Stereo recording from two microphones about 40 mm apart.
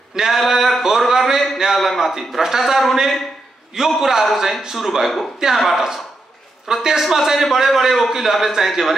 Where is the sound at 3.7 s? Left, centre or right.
Centre.